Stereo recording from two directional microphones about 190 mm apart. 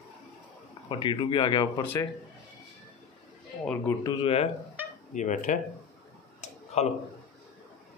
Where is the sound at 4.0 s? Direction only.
25° left (ahead or behind).